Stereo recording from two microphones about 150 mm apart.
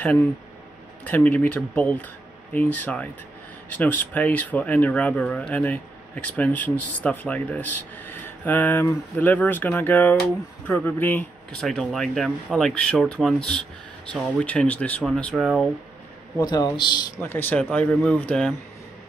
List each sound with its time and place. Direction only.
1.0 s speech: 10° left (ahead or behind)
11.6 s speech: centre (ahead or behind)
16.3 s a man's voice: 30° left (ahead or behind)
17.2 s speech: 15° left (ahead or behind)